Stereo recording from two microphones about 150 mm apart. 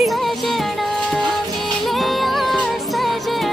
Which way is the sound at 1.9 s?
Centre (ahead or behind).